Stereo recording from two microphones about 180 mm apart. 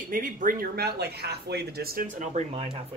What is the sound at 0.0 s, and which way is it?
Speech, 50° right (ahead or behind).